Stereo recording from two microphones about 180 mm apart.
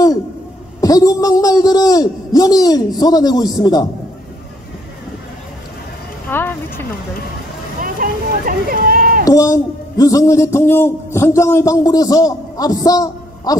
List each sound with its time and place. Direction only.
0.7 s a man's voice: 20° left (ahead or behind)
6.3 s speech: 10° left (ahead or behind)
7.8 s a sound: 50° right (ahead or behind)
9.2 s a man's voice: 20° left (ahead or behind)